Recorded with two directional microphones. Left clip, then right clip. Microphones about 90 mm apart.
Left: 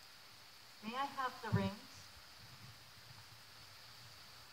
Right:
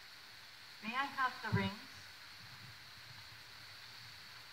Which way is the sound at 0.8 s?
25° left (ahead or behind).